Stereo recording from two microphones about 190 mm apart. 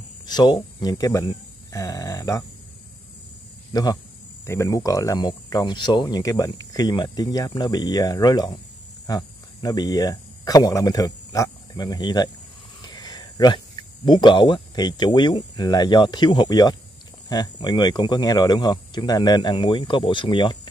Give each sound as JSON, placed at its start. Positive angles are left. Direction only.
{"t": 0.3, "sound": "speech", "side_deg": 20}
{"t": 3.7, "sound": "speech", "side_deg": 20}